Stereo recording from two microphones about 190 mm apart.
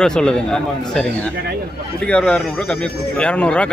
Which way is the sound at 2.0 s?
5° left (ahead or behind).